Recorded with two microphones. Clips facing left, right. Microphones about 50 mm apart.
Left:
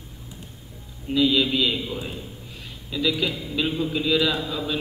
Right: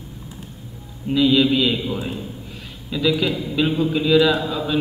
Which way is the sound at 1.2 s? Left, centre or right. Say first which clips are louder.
Right 4 dB; centre.